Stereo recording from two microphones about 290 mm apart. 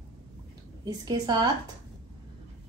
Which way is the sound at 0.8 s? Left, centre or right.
Centre.